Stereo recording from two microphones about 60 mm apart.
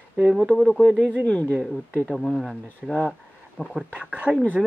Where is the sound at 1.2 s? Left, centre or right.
Left.